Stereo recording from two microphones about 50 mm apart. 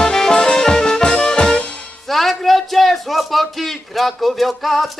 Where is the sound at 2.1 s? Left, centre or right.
Centre.